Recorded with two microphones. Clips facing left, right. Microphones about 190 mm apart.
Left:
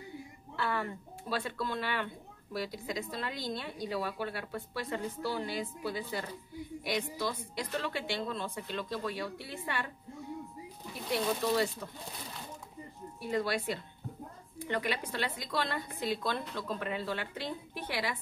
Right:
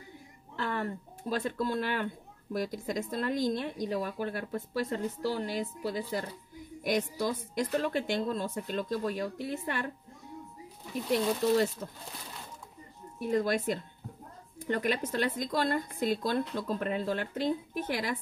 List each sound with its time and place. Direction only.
0.6 s a woman's voice: 40° right (ahead or behind)
11.1 s a woman's voice: 45° right (ahead or behind)
13.2 s a woman's voice: 45° right (ahead or behind)